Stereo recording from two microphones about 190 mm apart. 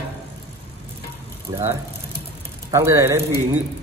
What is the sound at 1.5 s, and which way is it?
Speech, 20° right (ahead or behind).